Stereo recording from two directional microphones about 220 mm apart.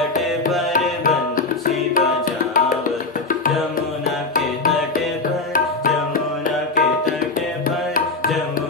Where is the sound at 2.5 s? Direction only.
40° left (ahead or behind).